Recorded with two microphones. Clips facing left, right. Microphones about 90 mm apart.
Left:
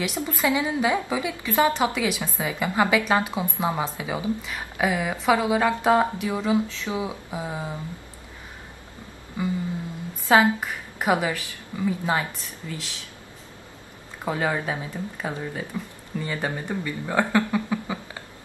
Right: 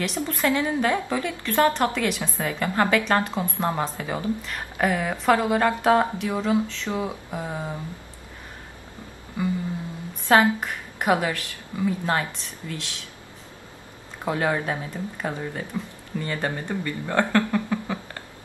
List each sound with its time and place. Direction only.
0.0 s a woman's voice: 5° left (ahead or behind)
10.2 s a woman's voice: 5° left (ahead or behind)
14.2 s a woman's voice: centre (ahead or behind)